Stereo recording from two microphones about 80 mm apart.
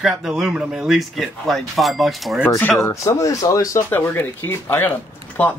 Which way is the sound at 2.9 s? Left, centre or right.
Left.